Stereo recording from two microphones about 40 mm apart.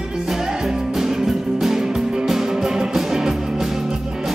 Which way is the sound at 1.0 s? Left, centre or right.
Centre.